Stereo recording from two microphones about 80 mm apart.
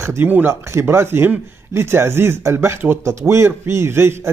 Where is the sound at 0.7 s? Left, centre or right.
Right.